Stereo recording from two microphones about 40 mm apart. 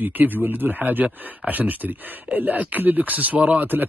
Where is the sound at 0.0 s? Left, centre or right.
Right.